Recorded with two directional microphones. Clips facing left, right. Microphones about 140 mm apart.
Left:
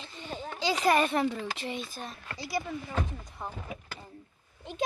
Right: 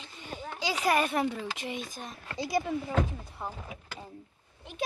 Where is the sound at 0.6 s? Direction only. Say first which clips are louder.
Left 2 dB; 10° right (ahead or behind).